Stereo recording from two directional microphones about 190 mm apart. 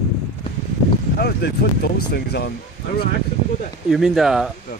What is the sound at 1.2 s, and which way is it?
Speech, 60° left (ahead or behind).